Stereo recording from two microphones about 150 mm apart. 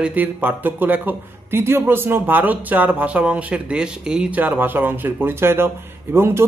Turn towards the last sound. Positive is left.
turn(degrees=-15)  # may be behind; listen again after turning